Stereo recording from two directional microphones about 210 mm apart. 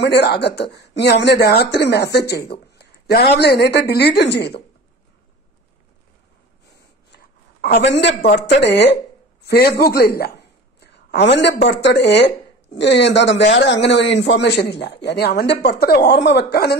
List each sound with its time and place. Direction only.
0.0 s speech: 50° left (ahead or behind)
7.1 s a sound: 50° left (ahead or behind)
8.3 s a man's voice: 55° left (ahead or behind)